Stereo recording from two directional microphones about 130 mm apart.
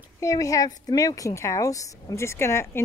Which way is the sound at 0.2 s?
25° left (ahead or behind).